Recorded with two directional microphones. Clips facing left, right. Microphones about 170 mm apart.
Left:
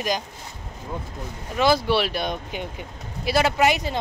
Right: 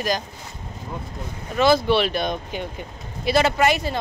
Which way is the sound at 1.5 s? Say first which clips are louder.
Right 2 dB; 10° left (ahead or behind).